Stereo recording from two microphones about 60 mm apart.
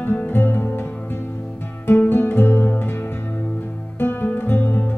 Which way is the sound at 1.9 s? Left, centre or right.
Left.